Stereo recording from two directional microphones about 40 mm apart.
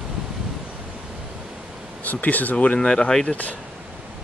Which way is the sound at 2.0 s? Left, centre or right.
Left.